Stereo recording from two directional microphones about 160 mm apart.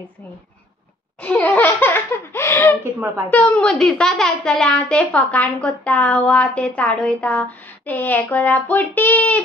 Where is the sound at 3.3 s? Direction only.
10° left (ahead or behind).